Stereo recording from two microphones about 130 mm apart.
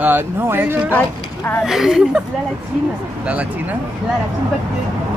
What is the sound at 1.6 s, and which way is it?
Speech, 5° right (ahead or behind).